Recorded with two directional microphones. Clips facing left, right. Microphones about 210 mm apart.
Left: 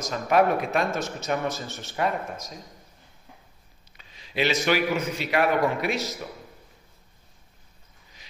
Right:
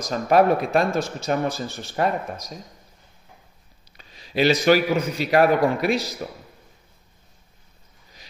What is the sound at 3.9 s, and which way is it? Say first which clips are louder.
A man's voice: right 5 dB; 40° right (ahead or behind).